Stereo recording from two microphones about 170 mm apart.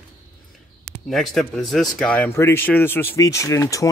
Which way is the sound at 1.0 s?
Centre (ahead or behind).